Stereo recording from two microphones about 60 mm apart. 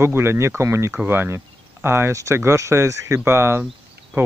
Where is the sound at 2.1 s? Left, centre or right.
Right.